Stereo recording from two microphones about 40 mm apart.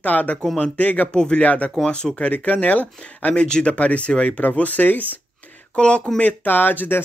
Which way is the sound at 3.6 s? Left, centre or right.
Left.